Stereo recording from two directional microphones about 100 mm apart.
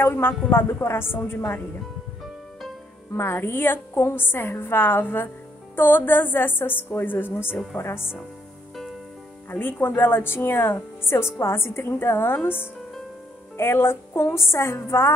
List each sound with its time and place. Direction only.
0.0 s speech: 20° left (ahead or behind)
3.2 s speech: 25° left (ahead or behind)
9.5 s speech: 20° left (ahead or behind)
13.6 s speech: 25° left (ahead or behind)